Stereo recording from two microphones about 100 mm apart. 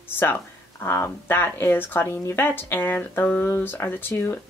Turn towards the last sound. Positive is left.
turn(degrees=25)  # may be behind; listen again after turning